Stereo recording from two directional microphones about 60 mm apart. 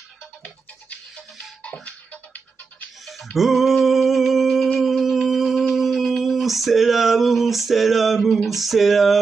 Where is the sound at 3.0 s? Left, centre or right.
Centre.